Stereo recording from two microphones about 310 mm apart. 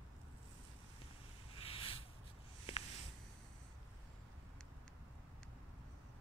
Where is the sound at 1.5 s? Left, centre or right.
Centre.